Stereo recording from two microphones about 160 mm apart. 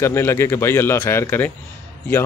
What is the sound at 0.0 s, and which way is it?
Speech, 15° left (ahead or behind).